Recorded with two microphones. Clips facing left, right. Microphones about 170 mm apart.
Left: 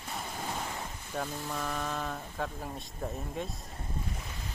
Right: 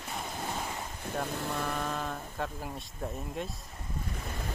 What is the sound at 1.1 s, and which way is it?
Speech, centre (ahead or behind).